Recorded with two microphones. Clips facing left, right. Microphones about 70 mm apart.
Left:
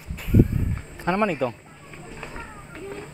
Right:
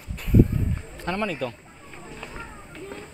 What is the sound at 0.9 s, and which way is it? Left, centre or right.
Speech, left.